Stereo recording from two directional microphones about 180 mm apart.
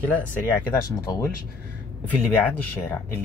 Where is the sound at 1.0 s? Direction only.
20° left (ahead or behind).